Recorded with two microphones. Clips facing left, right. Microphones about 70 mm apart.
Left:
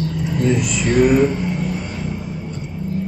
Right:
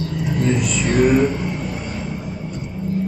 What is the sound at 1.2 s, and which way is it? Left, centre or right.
Vehicle, right.